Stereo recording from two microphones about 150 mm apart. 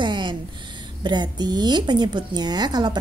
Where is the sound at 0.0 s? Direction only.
30° right (ahead or behind).